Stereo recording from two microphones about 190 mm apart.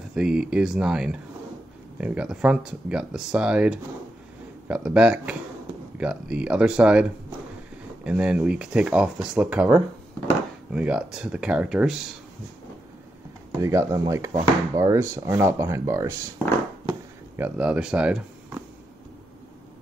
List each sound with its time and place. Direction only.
0.1 s speech: 5° right (ahead or behind)
13.6 s speech: 15° right (ahead or behind)
17.4 s speech: 5° right (ahead or behind)